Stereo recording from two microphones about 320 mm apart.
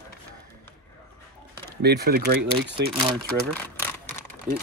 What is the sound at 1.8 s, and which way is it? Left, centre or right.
Speech, right.